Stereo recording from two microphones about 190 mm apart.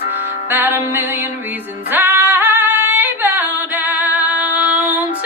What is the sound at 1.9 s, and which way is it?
Female singing, 10° right (ahead or behind).